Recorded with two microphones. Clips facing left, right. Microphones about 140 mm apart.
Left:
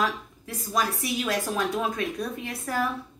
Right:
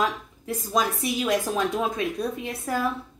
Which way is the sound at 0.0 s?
20° right (ahead or behind).